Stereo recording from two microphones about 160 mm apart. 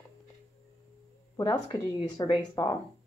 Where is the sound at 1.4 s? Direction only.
25° left (ahead or behind).